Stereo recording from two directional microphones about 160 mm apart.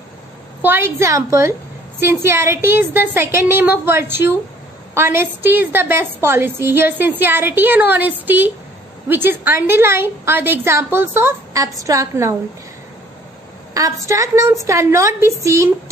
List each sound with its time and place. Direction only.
0.6 s a woman's voice: 15° right (ahead or behind)
14.0 s a woman's voice: 20° right (ahead or behind)